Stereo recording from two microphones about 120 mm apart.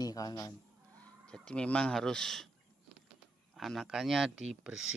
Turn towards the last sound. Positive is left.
turn(degrees=-5)  # may be behind; listen again after turning